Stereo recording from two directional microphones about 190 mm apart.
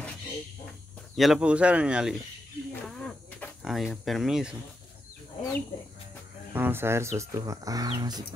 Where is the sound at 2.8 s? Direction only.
5° left (ahead or behind).